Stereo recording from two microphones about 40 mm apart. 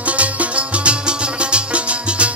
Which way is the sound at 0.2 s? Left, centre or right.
Right.